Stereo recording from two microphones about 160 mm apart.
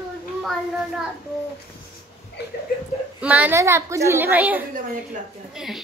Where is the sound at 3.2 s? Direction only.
10° right (ahead or behind).